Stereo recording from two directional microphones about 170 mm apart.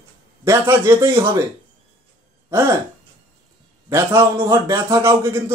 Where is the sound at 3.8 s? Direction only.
15° right (ahead or behind).